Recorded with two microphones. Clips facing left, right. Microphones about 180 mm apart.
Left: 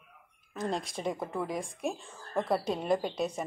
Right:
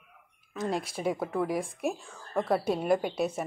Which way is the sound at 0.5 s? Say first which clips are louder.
Right 2 dB; 5° right (ahead or behind).